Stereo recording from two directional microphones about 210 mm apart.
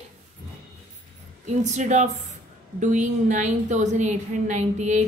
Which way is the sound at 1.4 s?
35° right (ahead or behind).